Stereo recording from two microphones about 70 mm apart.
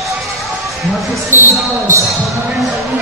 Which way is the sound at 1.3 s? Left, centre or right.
Right.